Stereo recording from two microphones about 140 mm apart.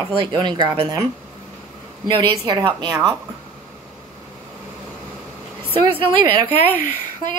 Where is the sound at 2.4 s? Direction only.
20° right (ahead or behind).